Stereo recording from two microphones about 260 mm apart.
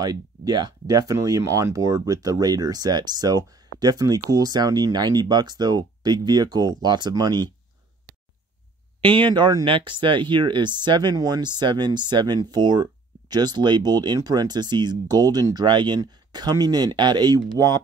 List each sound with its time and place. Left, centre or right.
0.0 s speech: centre
9.0 s speech: centre